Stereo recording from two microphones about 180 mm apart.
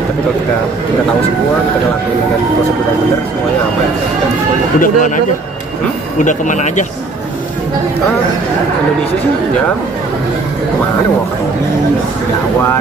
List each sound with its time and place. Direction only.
4.7 s speech: 50° left (ahead or behind)